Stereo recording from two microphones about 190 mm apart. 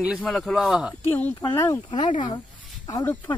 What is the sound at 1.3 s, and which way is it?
Speech, 20° left (ahead or behind).